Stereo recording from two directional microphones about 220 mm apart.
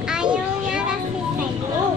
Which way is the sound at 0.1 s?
5° right (ahead or behind).